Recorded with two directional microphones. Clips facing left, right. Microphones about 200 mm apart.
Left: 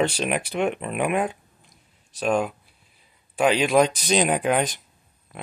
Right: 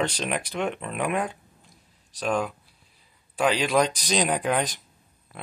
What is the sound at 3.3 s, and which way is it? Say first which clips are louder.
Speech: left 4 dB; 25° left (ahead or behind).